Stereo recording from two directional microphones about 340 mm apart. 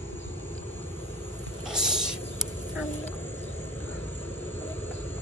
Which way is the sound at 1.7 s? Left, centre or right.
Centre.